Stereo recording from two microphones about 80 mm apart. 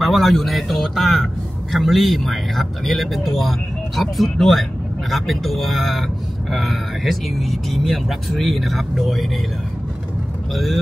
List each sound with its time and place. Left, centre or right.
0.0 s a man's voice: centre
10.5 s a man's voice: centre